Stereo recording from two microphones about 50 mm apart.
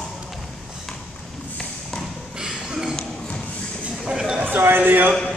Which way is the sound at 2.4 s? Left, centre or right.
Centre.